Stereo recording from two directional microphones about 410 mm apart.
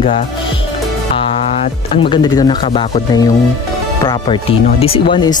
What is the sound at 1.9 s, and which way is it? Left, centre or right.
Speech, centre.